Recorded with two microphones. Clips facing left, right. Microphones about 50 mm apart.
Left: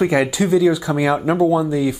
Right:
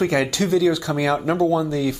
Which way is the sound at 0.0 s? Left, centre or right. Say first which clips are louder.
Left 3 dB; centre.